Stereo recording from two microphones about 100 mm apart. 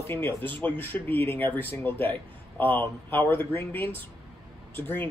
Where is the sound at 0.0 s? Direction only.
25° left (ahead or behind).